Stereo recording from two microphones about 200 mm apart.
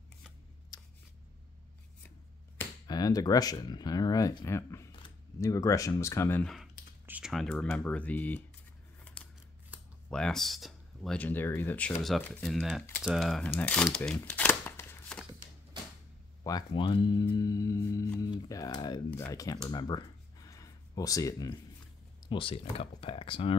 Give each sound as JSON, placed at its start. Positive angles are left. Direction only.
{"t": 0.7, "sound": "a sound", "side_deg": 20}
{"t": 2.0, "sound": "speech", "side_deg": 10}
{"t": 9.0, "sound": "scissors", "side_deg": 5}
{"t": 10.0, "sound": "speech", "side_deg": 5}
{"t": 14.1, "sound": "shuffling cards", "side_deg": 10}
{"t": 16.4, "sound": "speech", "side_deg": 20}
{"t": 19.7, "sound": "a sound", "side_deg": 20}
{"t": 22.2, "sound": "speech", "side_deg": 25}